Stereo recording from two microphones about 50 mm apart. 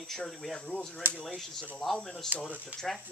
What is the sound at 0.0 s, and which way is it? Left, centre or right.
Speech, centre.